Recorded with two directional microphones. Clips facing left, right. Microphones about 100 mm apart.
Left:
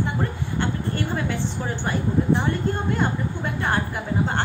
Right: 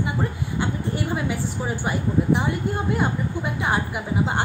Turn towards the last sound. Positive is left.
turn(degrees=-10)  # may be behind; listen again after turning